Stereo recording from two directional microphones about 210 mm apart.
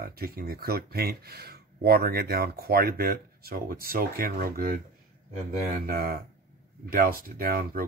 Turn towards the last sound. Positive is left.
turn(degrees=-45)  # may be behind; listen again after turning